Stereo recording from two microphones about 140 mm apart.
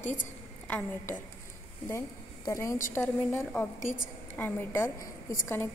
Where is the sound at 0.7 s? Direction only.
10° left (ahead or behind).